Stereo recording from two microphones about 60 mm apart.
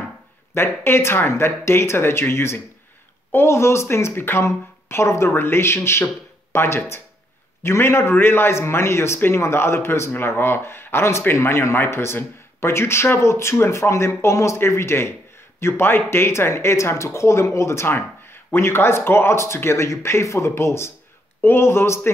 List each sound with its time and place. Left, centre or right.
0.6 s speech: left
5.3 s speech: left